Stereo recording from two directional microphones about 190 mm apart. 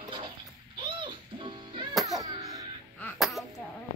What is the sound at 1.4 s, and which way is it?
Music, 25° right (ahead or behind).